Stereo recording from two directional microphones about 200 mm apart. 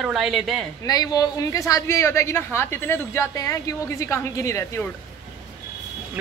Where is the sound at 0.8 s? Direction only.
20° left (ahead or behind).